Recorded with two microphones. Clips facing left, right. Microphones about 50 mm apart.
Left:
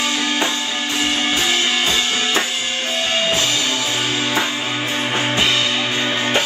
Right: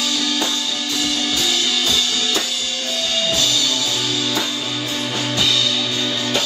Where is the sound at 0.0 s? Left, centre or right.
Left.